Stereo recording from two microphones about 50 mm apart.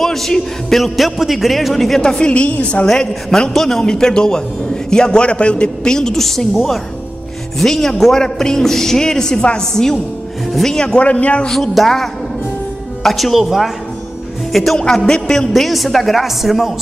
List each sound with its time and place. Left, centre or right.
0.0 s a man's voice: centre
2.0 s a man's voice: centre
3.1 s a man's voice: centre
5.9 s a man's voice: centre
7.5 s a man's voice: centre; by 11.4 s left
11.5 s a man's voice: centre
15.1 s a man's voice: centre
15.5 s a man's voice: centre